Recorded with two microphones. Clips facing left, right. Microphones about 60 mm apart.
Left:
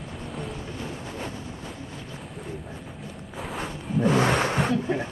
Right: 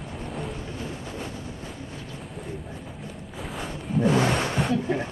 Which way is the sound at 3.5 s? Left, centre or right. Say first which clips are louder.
Even; centre.